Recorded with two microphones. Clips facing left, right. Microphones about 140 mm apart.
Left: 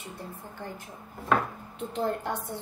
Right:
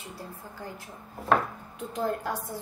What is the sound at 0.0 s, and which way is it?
Speech, 20° left (ahead or behind).